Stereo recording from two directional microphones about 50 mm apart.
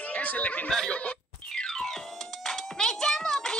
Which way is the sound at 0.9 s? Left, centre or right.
Left.